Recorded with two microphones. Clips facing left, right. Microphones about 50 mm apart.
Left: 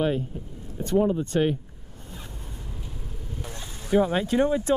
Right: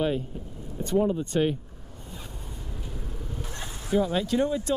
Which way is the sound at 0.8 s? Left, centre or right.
Centre.